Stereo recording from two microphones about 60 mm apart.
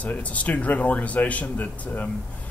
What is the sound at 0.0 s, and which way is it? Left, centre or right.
Speech, left.